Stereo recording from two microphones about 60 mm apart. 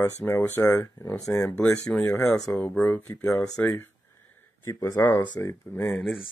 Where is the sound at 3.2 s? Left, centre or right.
Left.